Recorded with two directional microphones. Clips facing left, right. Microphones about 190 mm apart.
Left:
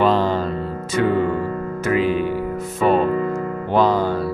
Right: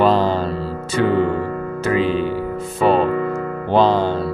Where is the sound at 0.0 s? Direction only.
35° right (ahead or behind).